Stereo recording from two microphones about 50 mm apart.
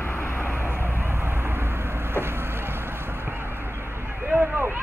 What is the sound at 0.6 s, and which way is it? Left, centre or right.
Vehicle, right.